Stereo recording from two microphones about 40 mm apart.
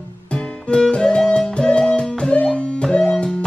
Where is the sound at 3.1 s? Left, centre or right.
Centre.